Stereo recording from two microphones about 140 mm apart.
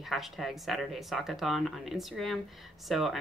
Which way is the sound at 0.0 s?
Centre (ahead or behind).